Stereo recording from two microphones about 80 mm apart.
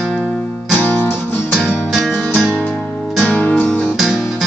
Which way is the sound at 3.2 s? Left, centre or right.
Centre.